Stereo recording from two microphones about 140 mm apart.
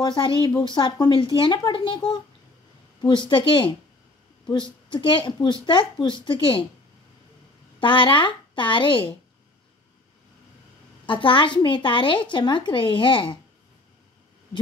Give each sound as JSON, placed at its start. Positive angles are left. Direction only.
{"t": 0.0, "sound": "a woman's voice", "side_deg": 35}
{"t": 3.0, "sound": "a woman's voice", "side_deg": 35}
{"t": 7.8, "sound": "a woman's voice", "side_deg": 35}
{"t": 11.1, "sound": "a woman's voice", "side_deg": 35}